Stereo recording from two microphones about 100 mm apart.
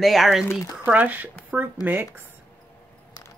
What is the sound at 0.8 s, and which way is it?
Speech, 15° right (ahead or behind).